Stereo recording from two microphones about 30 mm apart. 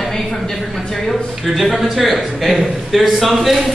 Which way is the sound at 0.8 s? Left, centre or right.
Centre.